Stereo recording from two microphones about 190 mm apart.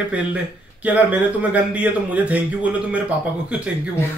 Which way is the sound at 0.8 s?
5° right (ahead or behind).